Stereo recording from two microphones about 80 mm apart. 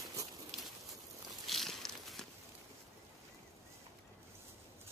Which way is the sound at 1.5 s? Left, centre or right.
Centre.